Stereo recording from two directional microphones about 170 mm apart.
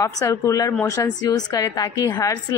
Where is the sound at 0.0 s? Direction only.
20° left (ahead or behind).